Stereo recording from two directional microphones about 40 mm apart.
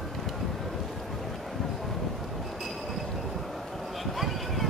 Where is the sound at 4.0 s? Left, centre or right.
Centre.